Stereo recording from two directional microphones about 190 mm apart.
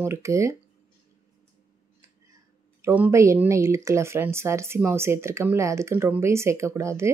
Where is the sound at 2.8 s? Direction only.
10° right (ahead or behind).